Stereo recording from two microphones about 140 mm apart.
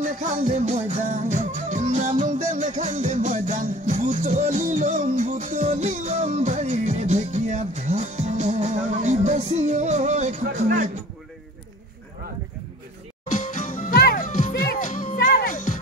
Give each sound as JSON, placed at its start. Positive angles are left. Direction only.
{"t": 0.0, "sound": "music", "side_deg": -60}
{"t": 13.3, "sound": "music", "side_deg": 70}